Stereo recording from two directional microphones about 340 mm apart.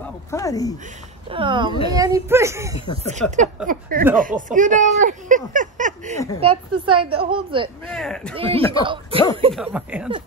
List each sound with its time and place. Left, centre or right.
0.0 s a sound: centre
1.3 s a woman's voice: centre
3.1 s a woman's voice: right
7.9 s speech: centre
8.4 s a woman's voice: centre
9.5 s speech: centre